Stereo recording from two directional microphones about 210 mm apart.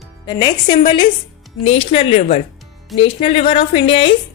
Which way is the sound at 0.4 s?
20° left (ahead or behind).